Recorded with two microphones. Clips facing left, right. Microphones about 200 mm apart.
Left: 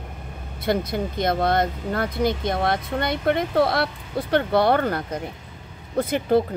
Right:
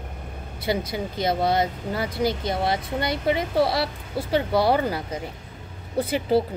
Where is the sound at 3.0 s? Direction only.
55° left (ahead or behind).